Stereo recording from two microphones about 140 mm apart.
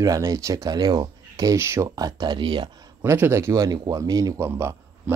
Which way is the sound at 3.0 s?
20° right (ahead or behind).